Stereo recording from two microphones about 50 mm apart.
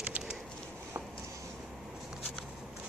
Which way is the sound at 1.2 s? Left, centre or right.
Right.